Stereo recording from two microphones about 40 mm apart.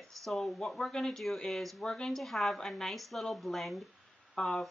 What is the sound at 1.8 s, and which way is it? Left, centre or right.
Speech, centre.